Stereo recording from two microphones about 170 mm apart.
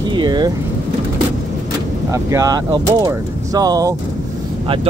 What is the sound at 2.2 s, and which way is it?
Speech, 20° right (ahead or behind).